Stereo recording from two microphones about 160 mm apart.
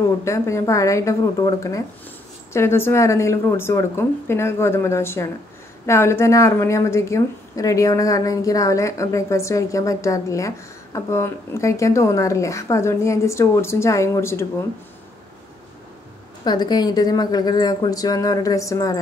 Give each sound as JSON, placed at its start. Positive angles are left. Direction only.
{"t": 0.2, "sound": "a woman's voice", "side_deg": 20}
{"t": 16.4, "sound": "a woman's voice", "side_deg": 25}